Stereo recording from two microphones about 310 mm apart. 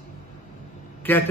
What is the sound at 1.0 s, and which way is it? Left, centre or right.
Speech, centre.